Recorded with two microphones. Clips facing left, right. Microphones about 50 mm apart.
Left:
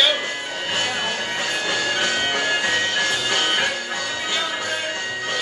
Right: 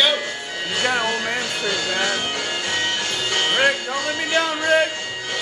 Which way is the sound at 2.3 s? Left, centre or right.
Left.